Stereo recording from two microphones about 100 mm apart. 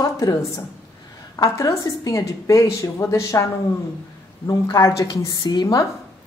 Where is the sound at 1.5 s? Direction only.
30° left (ahead or behind).